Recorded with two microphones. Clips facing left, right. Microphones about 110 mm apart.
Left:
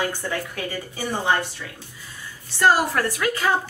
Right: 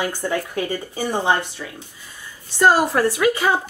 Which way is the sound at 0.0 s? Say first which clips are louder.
Right 3 dB; 15° right (ahead or behind).